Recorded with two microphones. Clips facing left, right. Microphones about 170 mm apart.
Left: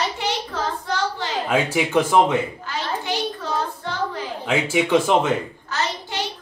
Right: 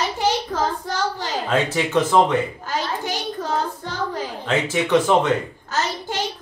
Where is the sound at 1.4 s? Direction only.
10° left (ahead or behind).